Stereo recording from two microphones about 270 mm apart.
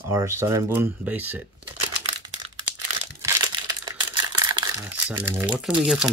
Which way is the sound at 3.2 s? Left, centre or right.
Centre.